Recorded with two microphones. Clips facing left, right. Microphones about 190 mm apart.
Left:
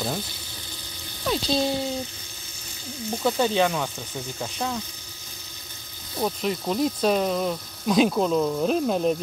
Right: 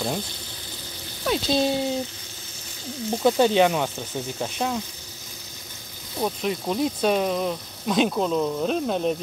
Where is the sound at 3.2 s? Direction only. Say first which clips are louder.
Right 4 dB; 20° right (ahead or behind).